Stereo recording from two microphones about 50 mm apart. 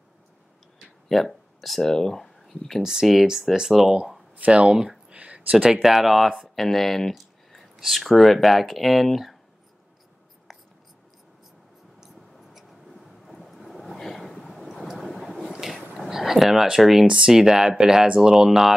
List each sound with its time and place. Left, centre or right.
1.0 s speech: centre
2.8 s speech: centre
4.4 s speech: right; by 9.4 s centre
10.5 s writing: centre
12.0 s a sound: centre
12.9 s boat: centre
15.5 s a sound: centre
17.0 s speech: centre
18.3 s speech: centre